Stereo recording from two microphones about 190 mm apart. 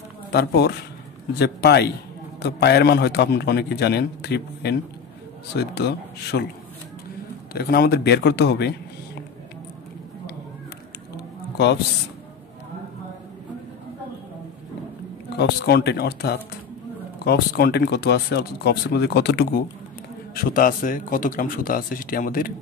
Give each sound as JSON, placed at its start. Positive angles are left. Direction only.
{"t": 0.3, "sound": "speech", "side_deg": 60}
{"t": 7.5, "sound": "speech", "side_deg": 55}
{"t": 11.1, "sound": "a sound", "side_deg": 60}
{"t": 15.3, "sound": "speech", "side_deg": 60}
{"t": 20.3, "sound": "speech", "side_deg": 45}